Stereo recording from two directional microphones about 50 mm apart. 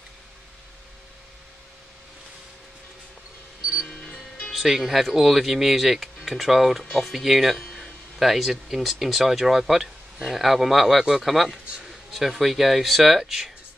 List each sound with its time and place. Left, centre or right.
4.0 s music: left
4.5 s speech: centre